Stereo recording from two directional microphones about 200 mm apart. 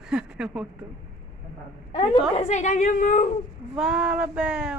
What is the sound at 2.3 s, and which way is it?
Speech, 35° left (ahead or behind).